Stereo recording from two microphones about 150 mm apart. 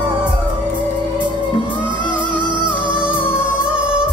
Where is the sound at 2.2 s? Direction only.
30° right (ahead or behind).